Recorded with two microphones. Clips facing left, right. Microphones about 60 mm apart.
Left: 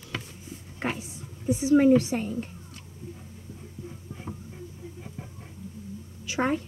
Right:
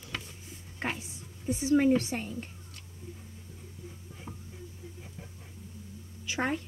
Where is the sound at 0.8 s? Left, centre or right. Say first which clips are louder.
Left 4 dB; centre.